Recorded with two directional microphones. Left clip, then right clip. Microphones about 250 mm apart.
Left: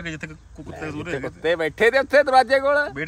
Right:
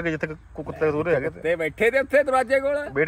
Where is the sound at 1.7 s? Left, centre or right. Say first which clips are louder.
Left 3 dB; left.